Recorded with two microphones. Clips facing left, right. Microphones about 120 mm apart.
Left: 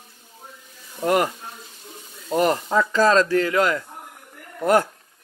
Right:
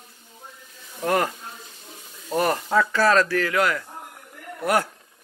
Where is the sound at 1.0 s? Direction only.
20° left (ahead or behind).